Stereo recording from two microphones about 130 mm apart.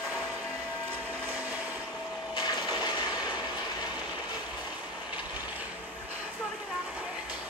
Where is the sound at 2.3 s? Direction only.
35° left (ahead or behind).